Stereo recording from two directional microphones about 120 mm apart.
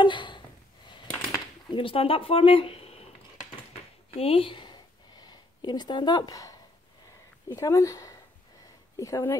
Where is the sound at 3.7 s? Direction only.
60° left (ahead or behind); by 6.6 s 30° left (ahead or behind).